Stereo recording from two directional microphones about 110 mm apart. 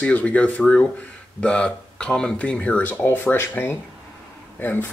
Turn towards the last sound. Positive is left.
turn(degrees=20)  # may be behind; listen again after turning